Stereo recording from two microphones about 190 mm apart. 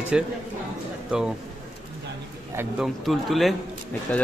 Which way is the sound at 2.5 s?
5° right (ahead or behind).